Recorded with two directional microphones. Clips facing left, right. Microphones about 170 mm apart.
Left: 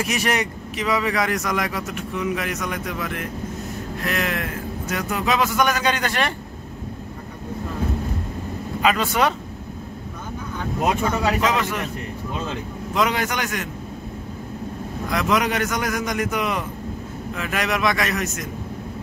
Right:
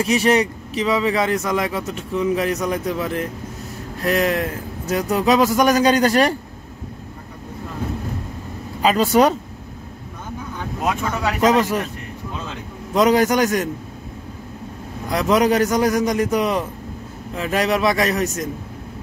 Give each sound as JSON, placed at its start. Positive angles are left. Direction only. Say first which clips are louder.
{"t": 0.0, "sound": "a man's voice", "louder": "right 6 dB", "side_deg": -30}
{"t": 8.8, "sound": "a man's voice", "louder": "right 5 dB", "side_deg": -35}
{"t": 11.4, "sound": "a man's voice", "louder": "right 6 dB", "side_deg": -40}
{"t": 12.9, "sound": "a man's voice", "louder": "right 7 dB", "side_deg": -40}
{"t": 15.0, "sound": "a man's voice", "louder": "right 5 dB", "side_deg": -35}